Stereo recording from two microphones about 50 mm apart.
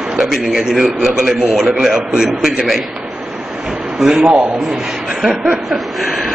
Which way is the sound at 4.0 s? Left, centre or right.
Centre.